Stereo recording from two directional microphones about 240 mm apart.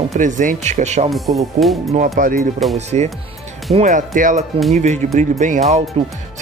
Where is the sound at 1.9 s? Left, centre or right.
Right.